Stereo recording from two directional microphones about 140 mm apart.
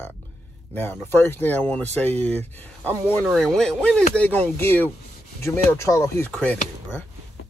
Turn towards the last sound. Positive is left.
turn(degrees=10)  # may be behind; listen again after turning